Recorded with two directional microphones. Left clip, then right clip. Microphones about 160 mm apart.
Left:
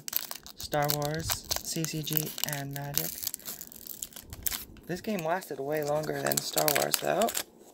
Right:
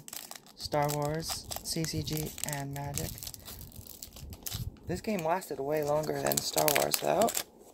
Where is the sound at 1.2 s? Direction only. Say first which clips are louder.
Left 5 dB; 25° left (ahead or behind).